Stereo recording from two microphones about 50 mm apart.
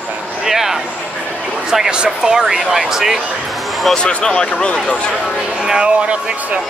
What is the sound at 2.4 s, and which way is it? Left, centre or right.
Speech, centre.